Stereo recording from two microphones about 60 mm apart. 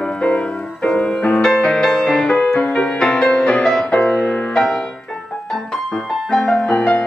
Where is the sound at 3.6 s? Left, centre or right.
Centre.